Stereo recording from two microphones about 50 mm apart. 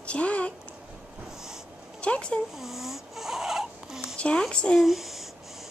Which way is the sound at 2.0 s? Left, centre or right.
Left.